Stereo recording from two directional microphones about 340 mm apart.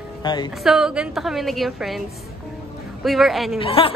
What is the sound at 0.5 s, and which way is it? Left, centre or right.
Speech, centre.